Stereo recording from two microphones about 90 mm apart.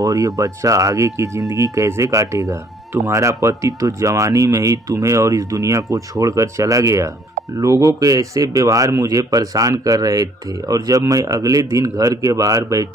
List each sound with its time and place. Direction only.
0.0 s speech: 40° right (ahead or behind)